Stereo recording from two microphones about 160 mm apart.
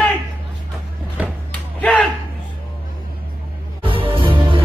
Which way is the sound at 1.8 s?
10° left (ahead or behind).